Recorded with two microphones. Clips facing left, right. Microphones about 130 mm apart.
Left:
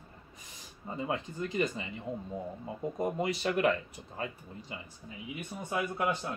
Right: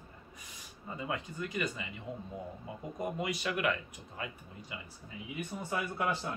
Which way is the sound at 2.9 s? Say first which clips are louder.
Left 3 dB; 30° left (ahead or behind).